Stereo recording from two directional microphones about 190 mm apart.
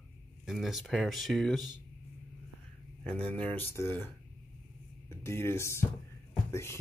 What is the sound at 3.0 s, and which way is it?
Speech, 5° left (ahead or behind).